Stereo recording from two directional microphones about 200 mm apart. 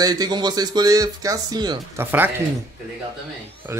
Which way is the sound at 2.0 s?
10° right (ahead or behind).